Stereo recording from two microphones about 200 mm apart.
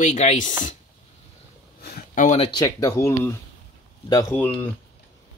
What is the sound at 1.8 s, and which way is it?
Speech, 50° left (ahead or behind).